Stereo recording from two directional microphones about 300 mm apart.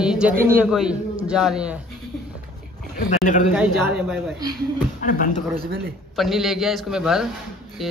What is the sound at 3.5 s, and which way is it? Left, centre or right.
Speech, centre.